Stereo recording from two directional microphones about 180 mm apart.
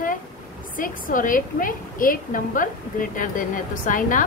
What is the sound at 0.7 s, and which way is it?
A woman's voice, 50° left (ahead or behind).